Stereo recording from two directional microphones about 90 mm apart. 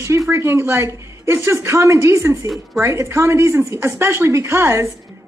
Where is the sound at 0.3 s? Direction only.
30° right (ahead or behind).